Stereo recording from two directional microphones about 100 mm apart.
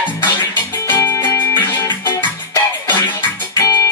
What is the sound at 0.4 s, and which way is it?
Music, 30° left (ahead or behind).